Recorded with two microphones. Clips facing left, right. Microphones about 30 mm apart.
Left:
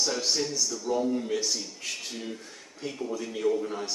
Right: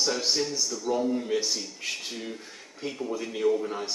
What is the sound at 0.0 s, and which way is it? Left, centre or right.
Speech, centre.